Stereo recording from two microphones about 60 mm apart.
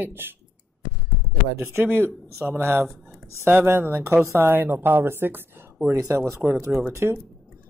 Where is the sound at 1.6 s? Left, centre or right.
Right.